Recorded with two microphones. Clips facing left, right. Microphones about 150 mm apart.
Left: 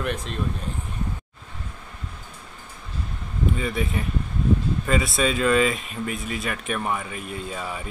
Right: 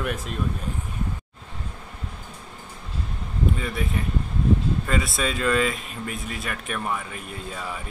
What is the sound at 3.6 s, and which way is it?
Speech, centre (ahead or behind).